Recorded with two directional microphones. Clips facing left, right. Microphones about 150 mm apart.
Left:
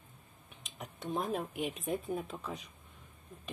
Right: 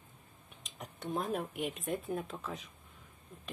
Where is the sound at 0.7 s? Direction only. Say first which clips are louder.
Even; centre (ahead or behind).